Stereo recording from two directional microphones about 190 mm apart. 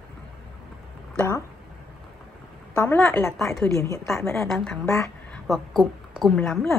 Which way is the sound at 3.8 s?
15° left (ahead or behind).